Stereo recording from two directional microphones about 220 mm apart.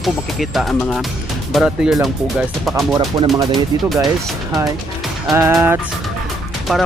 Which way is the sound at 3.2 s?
20° right (ahead or behind).